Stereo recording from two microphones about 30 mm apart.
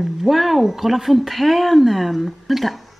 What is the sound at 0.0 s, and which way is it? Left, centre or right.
Speech, centre.